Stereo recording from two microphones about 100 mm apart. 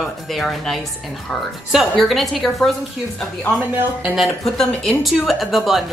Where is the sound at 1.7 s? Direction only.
Centre (ahead or behind).